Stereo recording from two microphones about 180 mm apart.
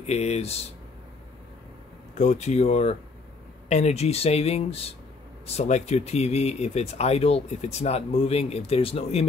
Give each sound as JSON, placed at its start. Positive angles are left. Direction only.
{"t": 0.0, "sound": "speech", "side_deg": 35}
{"t": 2.1, "sound": "speech", "side_deg": 40}